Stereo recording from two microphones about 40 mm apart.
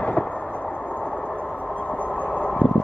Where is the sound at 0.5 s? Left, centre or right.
Left.